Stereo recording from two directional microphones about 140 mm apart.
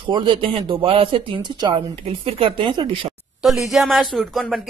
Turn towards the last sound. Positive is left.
turn(degrees=0)  # may be behind; listen again after turning